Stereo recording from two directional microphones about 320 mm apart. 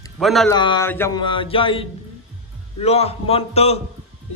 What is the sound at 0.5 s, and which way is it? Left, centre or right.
A man's voice, centre.